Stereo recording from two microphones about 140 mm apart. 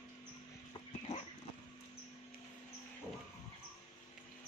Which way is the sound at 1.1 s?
55° left (ahead or behind).